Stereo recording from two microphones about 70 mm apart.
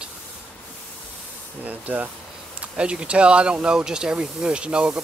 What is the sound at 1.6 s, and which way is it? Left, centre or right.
Speech, right.